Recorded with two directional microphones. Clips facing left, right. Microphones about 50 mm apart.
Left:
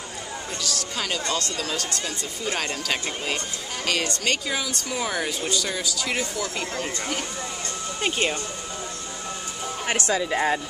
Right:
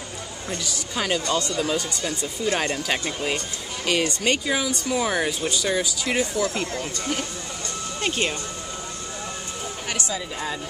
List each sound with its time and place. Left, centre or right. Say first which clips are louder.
0.5 s speech: right 2 dB; centre
6.5 s speech: right 2 dB; centre
8.0 s speech: left 1 dB; centre
10.3 s speech: left 7 dB; left